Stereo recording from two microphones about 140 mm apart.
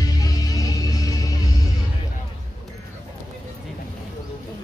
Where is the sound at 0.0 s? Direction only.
25° left (ahead or behind).